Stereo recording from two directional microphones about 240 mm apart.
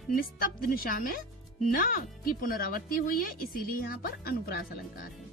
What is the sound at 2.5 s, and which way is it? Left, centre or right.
Speech, left.